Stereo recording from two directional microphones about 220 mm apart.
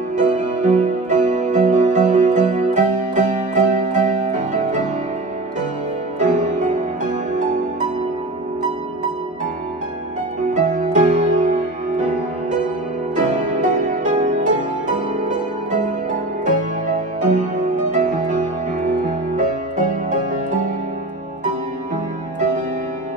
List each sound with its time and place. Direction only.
0.2 s music: 35° right (ahead or behind)
6.1 s music: 35° right (ahead or behind)
10.5 s music: 35° right (ahead or behind)
13.1 s music: 35° right (ahead or behind)
17.9 s music: 30° right (ahead or behind)